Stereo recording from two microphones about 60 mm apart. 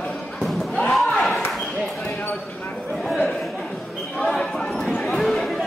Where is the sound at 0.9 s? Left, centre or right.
Centre.